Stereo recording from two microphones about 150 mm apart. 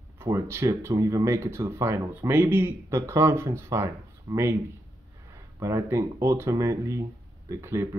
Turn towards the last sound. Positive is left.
turn(degrees=-20)  # may be behind; listen again after turning